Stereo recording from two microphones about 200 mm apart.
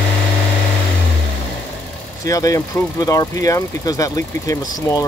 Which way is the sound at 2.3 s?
15° left (ahead or behind).